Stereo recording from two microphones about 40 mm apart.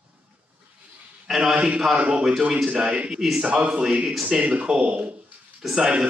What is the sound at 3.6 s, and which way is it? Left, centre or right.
Speech, right.